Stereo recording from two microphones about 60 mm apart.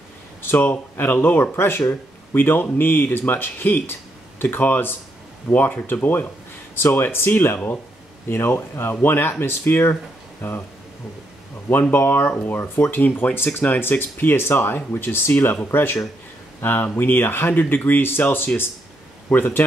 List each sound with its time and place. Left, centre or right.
0.4 s speech: left
11.9 s a man's voice: left